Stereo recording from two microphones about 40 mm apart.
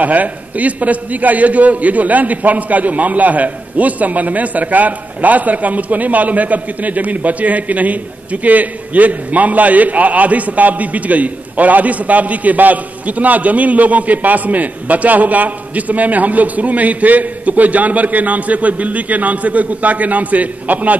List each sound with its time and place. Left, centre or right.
0.0 s a man's voice: right